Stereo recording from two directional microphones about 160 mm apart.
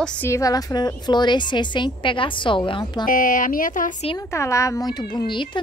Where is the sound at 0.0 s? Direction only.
15° left (ahead or behind).